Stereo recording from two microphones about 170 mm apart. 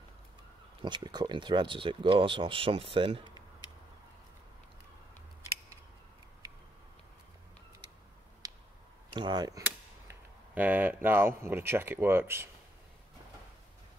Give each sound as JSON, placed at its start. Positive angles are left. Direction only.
{"t": 0.8, "sound": "speech", "side_deg": -25}
{"t": 6.4, "sound": "tick-tock", "side_deg": -20}
{"t": 8.4, "sound": "a sound", "side_deg": -20}
{"t": 9.1, "sound": "speech", "side_deg": -25}
{"t": 10.0, "sound": "speech", "side_deg": -10}